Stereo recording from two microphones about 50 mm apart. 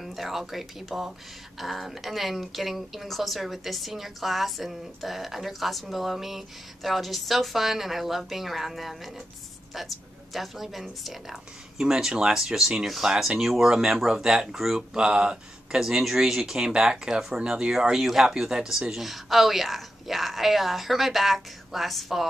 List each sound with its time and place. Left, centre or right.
0.0 s speech: centre
15.9 s speech: centre